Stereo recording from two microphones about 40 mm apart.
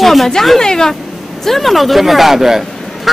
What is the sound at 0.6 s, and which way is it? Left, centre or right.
Speech, centre.